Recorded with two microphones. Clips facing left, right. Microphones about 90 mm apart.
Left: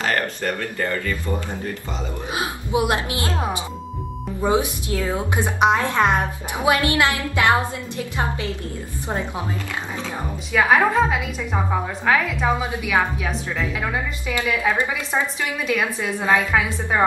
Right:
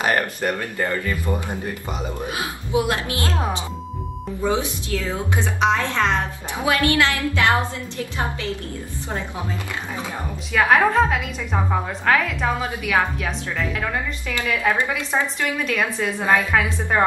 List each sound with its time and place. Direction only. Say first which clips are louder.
0.0 s speech: right 2 dB; 15° right (ahead or behind)
2.2 s a woman's voice: left 1 dB; 20° left (ahead or behind)
4.4 s a woman's voice: left 2 dB; 15° left (ahead or behind)
10.5 s a woman's voice: even; 5° left (ahead or behind)